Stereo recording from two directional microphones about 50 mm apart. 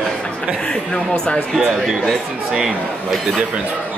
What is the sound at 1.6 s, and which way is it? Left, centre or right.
Speech, centre.